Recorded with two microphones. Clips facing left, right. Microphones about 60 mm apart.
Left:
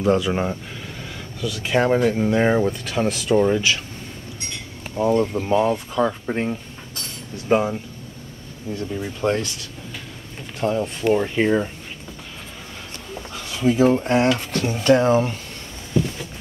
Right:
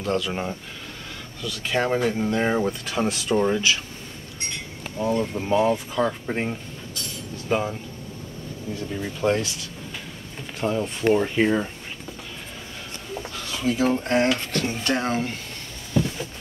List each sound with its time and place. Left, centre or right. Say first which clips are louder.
0.0 s speech: left 6 dB; centre
2.6 s speech: left 3 dB; centre
4.9 s speech: left 5 dB; left
5.4 s speech: left 1 dB; centre
6.3 s speech: left 3 dB; centre
7.4 s speech: left 5 dB; centre
8.7 s speech: left 4 dB; centre
10.7 s speech: left 1 dB; centre
13.6 s speech: left 6 dB; centre